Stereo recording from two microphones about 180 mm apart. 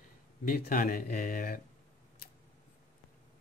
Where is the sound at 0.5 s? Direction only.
50° left (ahead or behind).